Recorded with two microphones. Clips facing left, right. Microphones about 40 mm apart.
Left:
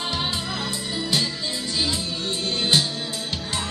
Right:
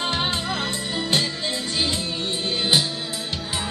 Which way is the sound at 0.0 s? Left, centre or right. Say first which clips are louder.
Right 2 dB; right.